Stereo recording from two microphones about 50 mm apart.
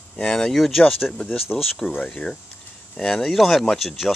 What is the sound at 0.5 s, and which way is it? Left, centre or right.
Speech, centre.